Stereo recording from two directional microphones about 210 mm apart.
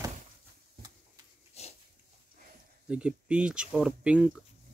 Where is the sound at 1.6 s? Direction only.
30° left (ahead or behind).